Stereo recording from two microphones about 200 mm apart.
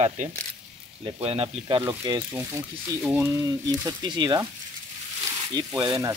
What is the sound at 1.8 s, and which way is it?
Speech, 15° right (ahead or behind).